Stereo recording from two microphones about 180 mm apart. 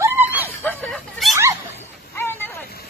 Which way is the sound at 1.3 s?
15° right (ahead or behind).